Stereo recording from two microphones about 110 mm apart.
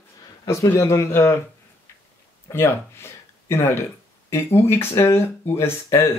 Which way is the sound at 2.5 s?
25° left (ahead or behind).